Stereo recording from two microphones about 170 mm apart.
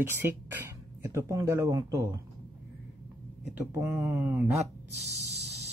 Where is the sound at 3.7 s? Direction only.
10° right (ahead or behind).